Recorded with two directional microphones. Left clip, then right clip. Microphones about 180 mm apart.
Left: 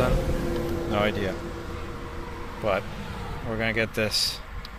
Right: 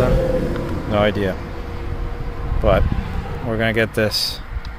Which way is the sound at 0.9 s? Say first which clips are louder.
Right 9 dB; 15° right (ahead or behind).